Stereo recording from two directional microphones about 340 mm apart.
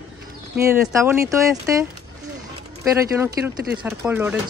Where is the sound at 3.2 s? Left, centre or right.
Centre.